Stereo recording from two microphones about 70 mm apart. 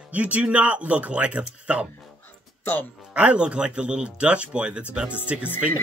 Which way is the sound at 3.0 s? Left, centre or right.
Centre.